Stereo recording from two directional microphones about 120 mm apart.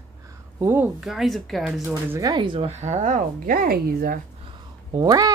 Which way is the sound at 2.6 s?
75° right (ahead or behind).